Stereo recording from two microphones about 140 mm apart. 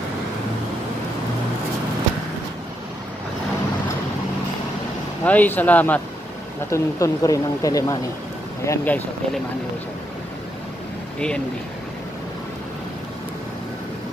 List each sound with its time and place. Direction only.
5.2 s speech: 10° left (ahead or behind)
6.7 s speech: 25° left (ahead or behind)
8.6 s speech: 10° left (ahead or behind)
11.1 s speech: 5° left (ahead or behind)